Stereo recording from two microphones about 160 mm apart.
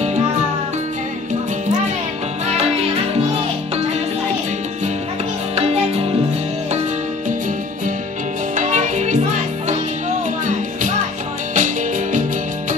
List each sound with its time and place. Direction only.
2.4 s music: 40° right (ahead or behind)
5.6 s music: 40° right (ahead or behind)
8.5 s music: 50° right (ahead or behind)
10.4 s music: 50° right (ahead or behind)